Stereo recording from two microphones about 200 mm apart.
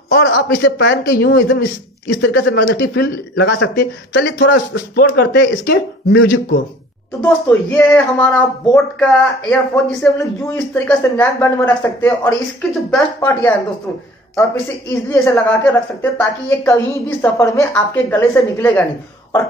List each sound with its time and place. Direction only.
0.1 s speech: 50° left (ahead or behind)
7.2 s speech: 10° left (ahead or behind)